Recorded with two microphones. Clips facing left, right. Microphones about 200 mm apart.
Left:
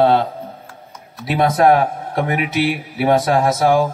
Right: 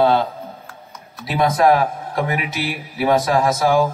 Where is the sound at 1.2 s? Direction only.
55° left (ahead or behind).